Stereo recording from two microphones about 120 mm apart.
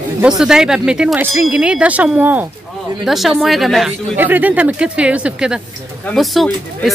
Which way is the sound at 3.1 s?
Centre (ahead or behind).